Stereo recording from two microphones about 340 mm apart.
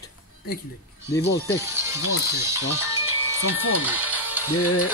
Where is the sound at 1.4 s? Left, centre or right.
Centre.